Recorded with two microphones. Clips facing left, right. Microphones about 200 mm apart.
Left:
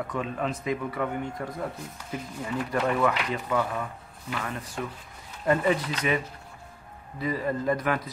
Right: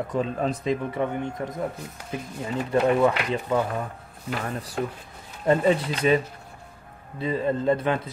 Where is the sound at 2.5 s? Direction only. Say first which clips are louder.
Right 5 dB; 25° right (ahead or behind).